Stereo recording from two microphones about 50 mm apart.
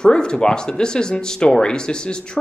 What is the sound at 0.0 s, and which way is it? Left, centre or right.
A man's voice, centre.